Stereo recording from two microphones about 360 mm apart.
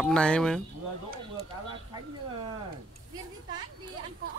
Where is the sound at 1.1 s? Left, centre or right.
Centre.